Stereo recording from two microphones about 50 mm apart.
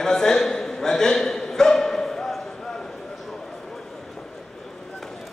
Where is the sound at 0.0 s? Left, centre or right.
Centre.